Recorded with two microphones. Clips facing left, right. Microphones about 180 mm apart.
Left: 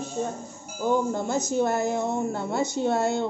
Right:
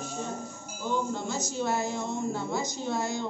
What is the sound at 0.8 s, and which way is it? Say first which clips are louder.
Speech: left 6 dB; 50° left (ahead or behind).